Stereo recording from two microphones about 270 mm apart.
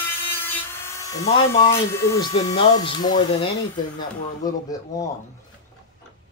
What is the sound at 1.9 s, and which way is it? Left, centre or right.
Speech, centre.